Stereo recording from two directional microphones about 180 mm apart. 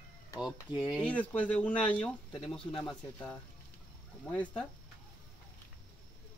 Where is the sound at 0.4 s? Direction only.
5° right (ahead or behind).